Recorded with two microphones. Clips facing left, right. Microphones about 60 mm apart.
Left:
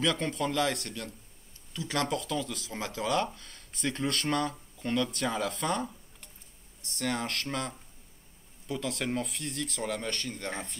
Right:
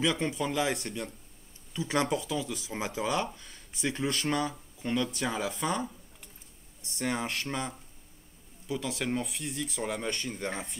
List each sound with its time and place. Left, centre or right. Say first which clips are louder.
0.0 s speech: even; centre